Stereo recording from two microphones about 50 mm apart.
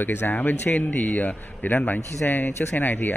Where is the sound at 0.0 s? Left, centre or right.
Left.